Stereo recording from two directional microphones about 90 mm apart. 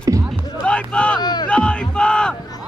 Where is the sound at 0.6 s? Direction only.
10° left (ahead or behind).